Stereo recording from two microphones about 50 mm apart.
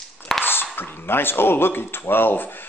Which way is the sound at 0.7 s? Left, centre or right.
Left.